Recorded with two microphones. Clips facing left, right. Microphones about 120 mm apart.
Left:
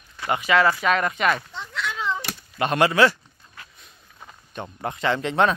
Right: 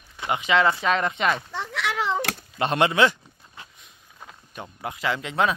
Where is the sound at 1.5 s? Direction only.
75° right (ahead or behind).